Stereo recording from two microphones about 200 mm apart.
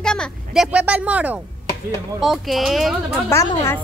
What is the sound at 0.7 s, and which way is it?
A woman's voice, 5° right (ahead or behind).